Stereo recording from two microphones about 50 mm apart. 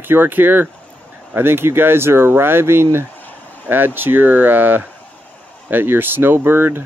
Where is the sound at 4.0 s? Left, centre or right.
Right.